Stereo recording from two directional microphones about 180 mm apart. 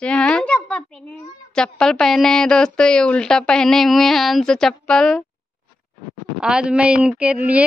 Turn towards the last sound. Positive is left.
turn(degrees=-10)  # may be behind; listen again after turning